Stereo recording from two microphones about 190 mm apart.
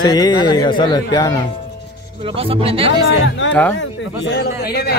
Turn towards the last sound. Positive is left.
turn(degrees=55)  # may be behind; listen again after turning